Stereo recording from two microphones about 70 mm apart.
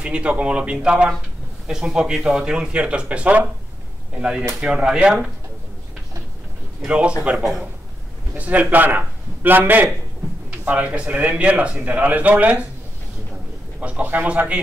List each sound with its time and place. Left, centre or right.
0.0 s speech: centre
6.9 s speech: centre
8.4 s speech: right
13.7 s speech: right